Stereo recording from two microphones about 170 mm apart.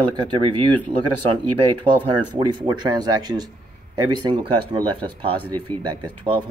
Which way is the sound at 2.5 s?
25° right (ahead or behind).